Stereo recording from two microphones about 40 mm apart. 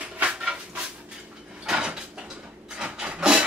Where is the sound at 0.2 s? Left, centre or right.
Right.